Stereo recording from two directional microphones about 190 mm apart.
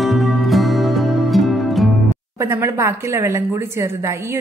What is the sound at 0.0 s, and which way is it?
Music, centre (ahead or behind).